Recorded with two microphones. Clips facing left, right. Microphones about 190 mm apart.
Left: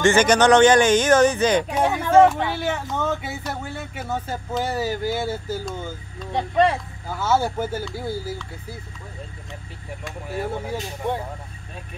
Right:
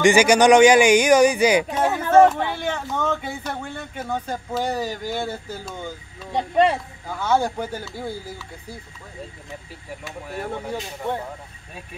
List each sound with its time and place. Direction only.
0.0 s speech: 10° right (ahead or behind)
1.7 s a sound: 10° left (ahead or behind)
2.2 s speech: 5° left (ahead or behind)
6.3 s speech: 15° right (ahead or behind)
7.1 s speech: 5° left (ahead or behind)
10.0 s speech: centre (ahead or behind)
11.0 s speech: 15° left (ahead or behind)